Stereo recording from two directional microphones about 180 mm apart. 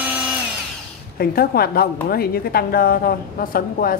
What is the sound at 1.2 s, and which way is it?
A woman's voice, 55° left (ahead or behind).